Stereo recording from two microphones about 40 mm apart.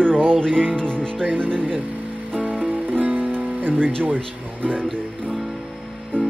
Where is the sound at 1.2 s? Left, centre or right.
Right.